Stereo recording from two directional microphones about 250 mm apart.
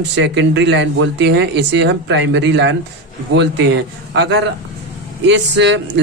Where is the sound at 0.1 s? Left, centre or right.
Right.